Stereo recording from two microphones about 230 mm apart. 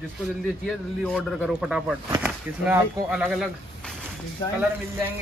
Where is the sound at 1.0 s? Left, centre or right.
Centre.